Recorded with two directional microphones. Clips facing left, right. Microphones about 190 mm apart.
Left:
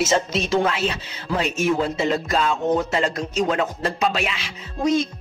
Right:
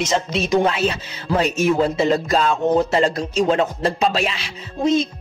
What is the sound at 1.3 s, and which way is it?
Music, 40° right (ahead or behind).